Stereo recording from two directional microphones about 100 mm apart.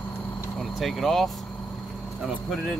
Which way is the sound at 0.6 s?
Centre (ahead or behind).